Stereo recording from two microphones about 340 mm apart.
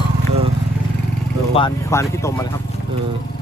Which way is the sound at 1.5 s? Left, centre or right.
Centre.